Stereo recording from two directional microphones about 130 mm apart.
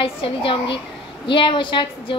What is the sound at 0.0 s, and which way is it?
A woman's voice, 45° left (ahead or behind).